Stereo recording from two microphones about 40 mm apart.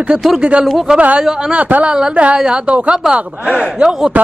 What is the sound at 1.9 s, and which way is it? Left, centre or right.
A man's voice, centre.